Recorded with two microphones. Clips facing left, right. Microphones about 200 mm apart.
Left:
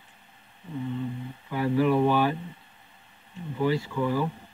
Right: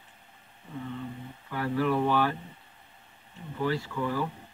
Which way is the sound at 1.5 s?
15° left (ahead or behind).